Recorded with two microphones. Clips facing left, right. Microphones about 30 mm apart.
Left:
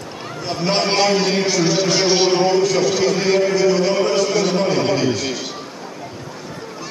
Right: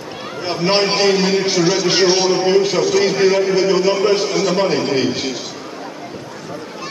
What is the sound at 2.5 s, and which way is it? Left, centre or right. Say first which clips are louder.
Speech: right 2 dB; centre.